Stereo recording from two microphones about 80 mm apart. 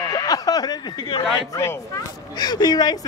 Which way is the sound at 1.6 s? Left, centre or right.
Left.